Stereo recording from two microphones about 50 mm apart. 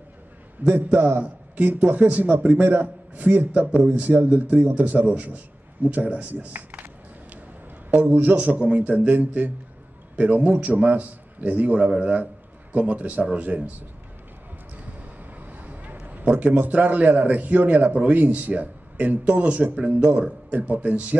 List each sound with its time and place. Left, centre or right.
0.6 s a man's voice: right
0.9 s a man's voice: right
1.2 s a man's voice: right
7.9 s a man's voice: right
15.0 s vehicle: right
16.0 s a sound: right
16.7 s a man's voice: right